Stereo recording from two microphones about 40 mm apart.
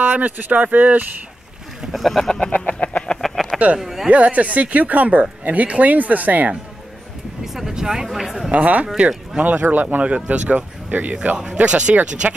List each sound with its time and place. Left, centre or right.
0.0 s speech: right
2.0 s speech: centre
2.5 s a sound: left
3.2 s a sound: centre
3.5 s speech: right
3.8 s speech: centre
4.1 s speech: right
7.4 s speech: centre
8.5 s speech: right
10.0 s speech: right
11.4 s speech: right